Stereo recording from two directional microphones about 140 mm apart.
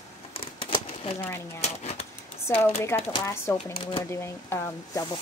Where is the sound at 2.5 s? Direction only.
20° left (ahead or behind).